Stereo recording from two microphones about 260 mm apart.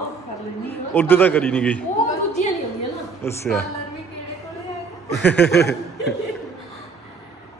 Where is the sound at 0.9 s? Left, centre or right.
Centre.